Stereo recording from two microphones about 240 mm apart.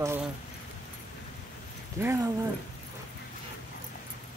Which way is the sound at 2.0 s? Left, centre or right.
Centre.